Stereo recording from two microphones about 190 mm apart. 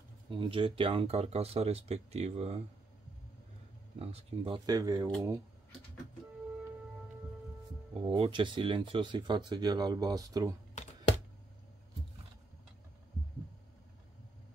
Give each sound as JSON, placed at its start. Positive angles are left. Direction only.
{"t": 0.3, "sound": "speech", "side_deg": -25}
{"t": 4.0, "sound": "speech", "side_deg": -30}
{"t": 4.6, "sound": "speech", "side_deg": -20}
{"t": 7.9, "sound": "speech", "side_deg": -30}